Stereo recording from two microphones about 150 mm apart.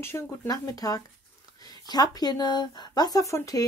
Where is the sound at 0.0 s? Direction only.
15° left (ahead or behind).